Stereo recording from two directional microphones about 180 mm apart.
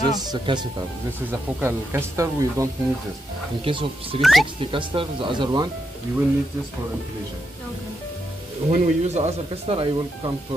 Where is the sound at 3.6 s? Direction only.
30° right (ahead or behind).